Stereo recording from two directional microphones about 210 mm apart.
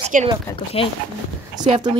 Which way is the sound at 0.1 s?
40° right (ahead or behind).